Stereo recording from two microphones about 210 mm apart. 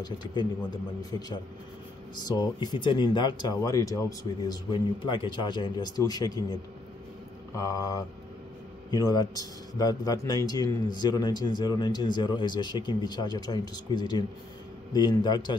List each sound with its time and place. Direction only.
0.0 s a man's voice: 20° left (ahead or behind)
2.2 s a man's voice: 20° left (ahead or behind)